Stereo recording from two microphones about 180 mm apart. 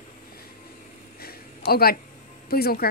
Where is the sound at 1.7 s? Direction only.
55° left (ahead or behind).